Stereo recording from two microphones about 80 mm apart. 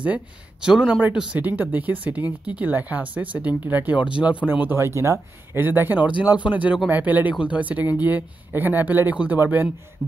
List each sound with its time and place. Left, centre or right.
0.0 s speech: centre
4.5 s speech: right